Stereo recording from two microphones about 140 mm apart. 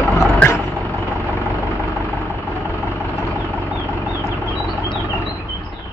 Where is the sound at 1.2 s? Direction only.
10° right (ahead or behind).